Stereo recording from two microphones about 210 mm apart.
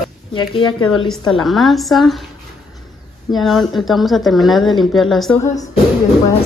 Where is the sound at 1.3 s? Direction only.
Centre (ahead or behind).